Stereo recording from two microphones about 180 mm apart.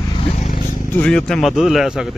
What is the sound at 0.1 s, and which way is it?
Vehicle, 35° left (ahead or behind).